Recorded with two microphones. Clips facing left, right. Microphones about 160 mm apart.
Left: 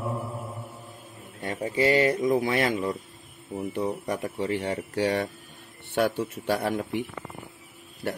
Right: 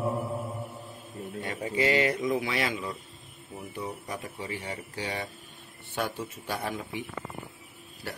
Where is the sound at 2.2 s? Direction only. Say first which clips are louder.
Left 5 dB; 50° left (ahead or behind).